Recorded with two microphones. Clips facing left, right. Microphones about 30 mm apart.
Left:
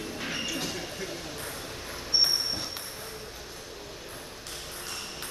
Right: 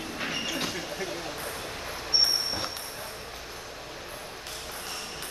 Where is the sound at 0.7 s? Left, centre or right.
Centre.